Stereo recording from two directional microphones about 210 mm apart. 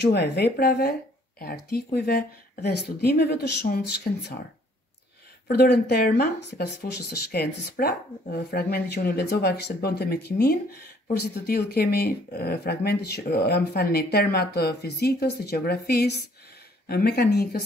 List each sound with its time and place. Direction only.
0.0 s speech: 55° left (ahead or behind)
5.5 s speech: 45° left (ahead or behind)